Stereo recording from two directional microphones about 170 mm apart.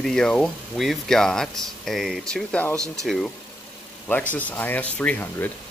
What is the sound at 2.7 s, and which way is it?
Speech, 20° right (ahead or behind).